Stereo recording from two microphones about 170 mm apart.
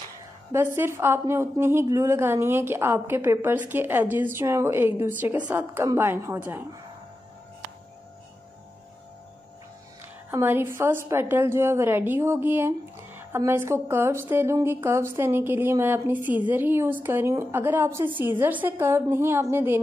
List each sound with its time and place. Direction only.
0.5 s a woman's voice: 15° right (ahead or behind)
10.3 s a woman's voice: 10° right (ahead or behind)